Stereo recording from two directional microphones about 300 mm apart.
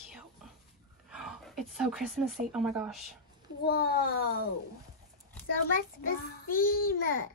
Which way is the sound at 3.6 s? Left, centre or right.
Left.